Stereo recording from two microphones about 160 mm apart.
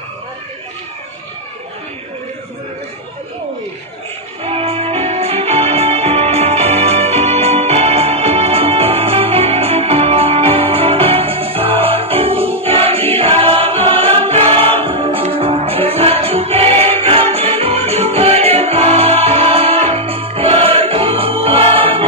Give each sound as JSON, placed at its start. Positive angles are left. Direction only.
{"t": 4.4, "sound": "music", "side_deg": -35}